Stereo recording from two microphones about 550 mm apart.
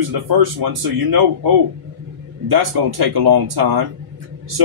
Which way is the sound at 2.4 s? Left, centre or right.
Right.